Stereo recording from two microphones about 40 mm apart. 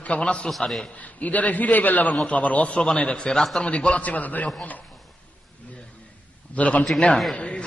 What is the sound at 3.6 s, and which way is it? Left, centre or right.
Speech, left.